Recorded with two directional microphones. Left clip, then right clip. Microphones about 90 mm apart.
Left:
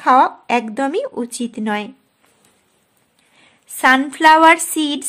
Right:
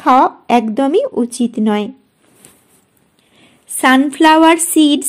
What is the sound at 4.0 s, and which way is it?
A woman's voice, 20° right (ahead or behind).